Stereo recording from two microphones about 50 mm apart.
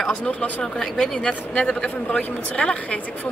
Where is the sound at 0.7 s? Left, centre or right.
Centre.